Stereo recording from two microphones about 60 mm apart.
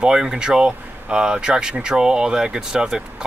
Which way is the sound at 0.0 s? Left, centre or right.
Centre.